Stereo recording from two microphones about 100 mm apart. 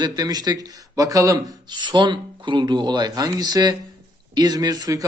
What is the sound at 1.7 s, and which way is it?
Speech, 50° right (ahead or behind).